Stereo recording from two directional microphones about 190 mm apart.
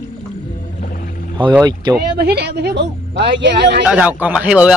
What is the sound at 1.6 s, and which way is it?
Speech, 20° right (ahead or behind).